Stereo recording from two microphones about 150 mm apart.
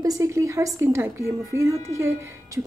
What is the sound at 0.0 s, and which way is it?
A woman's voice, 20° right (ahead or behind).